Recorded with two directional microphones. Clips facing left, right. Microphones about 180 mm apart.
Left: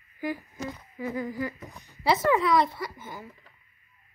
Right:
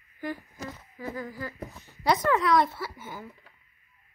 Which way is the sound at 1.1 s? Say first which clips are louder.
Left 5 dB; 20° left (ahead or behind).